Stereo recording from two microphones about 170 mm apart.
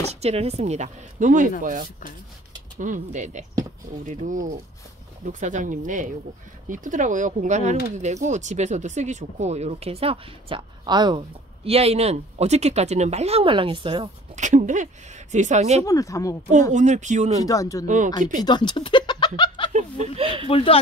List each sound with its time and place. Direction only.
0.1 s speech: 40° right (ahead or behind)
14.3 s speech: 45° right (ahead or behind)
15.8 s speech: 20° left (ahead or behind)
16.7 s speech: 45° right (ahead or behind)
17.4 s speech: 20° left (ahead or behind)
17.8 s speech: 45° right (ahead or behind)
18.4 s speech: 25° left (ahead or behind)
20.2 s speech: 30° right (ahead or behind)
20.4 s speech: 35° left (ahead or behind)